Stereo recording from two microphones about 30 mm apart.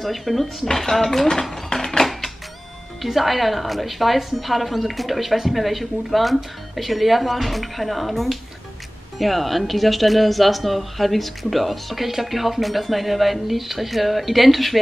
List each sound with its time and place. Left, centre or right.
0.0 s speech: centre
1.5 s a sound: centre
3.0 s speech: centre